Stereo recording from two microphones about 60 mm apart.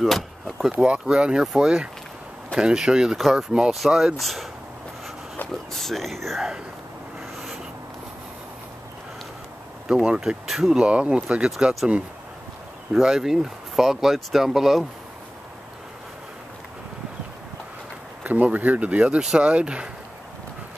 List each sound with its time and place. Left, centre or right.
0.0 s a sound: centre
0.7 s speech: centre
5.7 s speech: centre
9.8 s speech: centre
10.8 s speech: centre
12.9 s speech: centre
18.2 s speech: right